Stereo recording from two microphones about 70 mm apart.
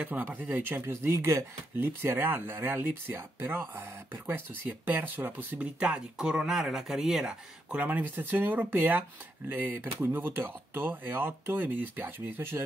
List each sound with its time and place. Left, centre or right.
0.0 s speech: right
1.1 s speech: right
1.8 s speech: right
4.8 s speech: right
5.8 s speech: centre
7.7 s speech: right
10.0 s speech: right